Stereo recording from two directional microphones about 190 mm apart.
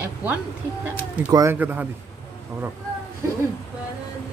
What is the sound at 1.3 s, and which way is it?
Speech, 10° right (ahead or behind).